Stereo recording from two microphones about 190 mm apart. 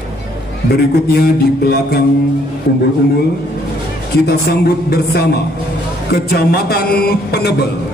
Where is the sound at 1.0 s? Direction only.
55° left (ahead or behind).